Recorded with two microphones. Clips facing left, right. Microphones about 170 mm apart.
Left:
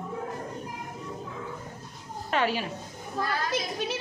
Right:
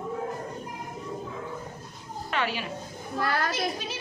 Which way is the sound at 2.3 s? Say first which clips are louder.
Left 3 dB; 40° left (ahead or behind).